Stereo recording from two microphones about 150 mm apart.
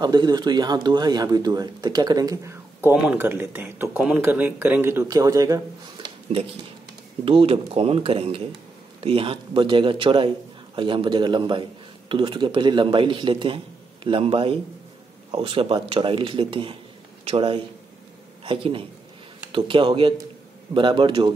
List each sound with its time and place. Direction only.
0.0 s a man's voice: 30° right (ahead or behind)